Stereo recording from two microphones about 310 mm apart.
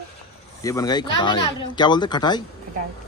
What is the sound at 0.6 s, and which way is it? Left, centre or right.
Speech, centre.